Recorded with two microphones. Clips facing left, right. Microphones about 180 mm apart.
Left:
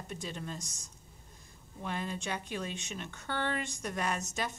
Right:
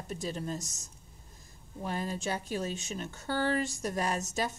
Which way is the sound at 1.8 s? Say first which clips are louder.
Right 3 dB; 40° right (ahead or behind).